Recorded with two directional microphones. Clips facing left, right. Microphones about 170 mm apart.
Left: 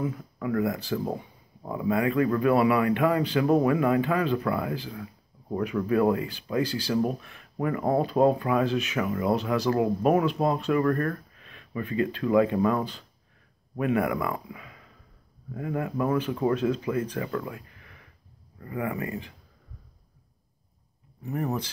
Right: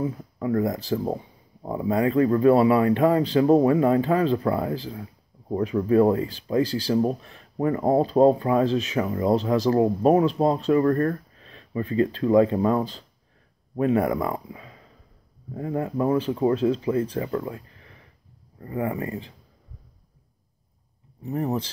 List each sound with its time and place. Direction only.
0.0 s speech: 35° right (ahead or behind)
21.2 s speech: 30° right (ahead or behind)